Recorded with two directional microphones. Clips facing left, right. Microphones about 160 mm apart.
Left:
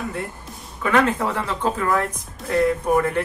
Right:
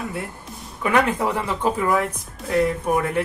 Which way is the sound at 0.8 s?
15° right (ahead or behind).